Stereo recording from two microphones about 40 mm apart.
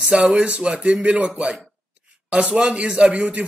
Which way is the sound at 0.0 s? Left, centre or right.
Right.